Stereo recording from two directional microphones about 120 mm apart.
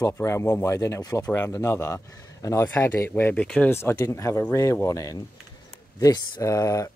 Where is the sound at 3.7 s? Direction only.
20° left (ahead or behind).